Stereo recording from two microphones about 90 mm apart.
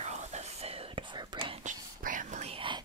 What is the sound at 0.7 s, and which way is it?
Whispering, 90° right.